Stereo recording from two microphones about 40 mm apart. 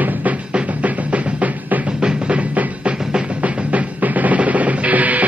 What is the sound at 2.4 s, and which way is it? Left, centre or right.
Music, right.